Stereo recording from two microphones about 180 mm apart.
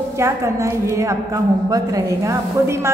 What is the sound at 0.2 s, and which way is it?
A woman's voice, 15° right (ahead or behind).